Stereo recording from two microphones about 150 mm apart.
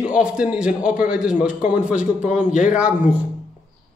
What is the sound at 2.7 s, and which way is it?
Speech, 5° right (ahead or behind).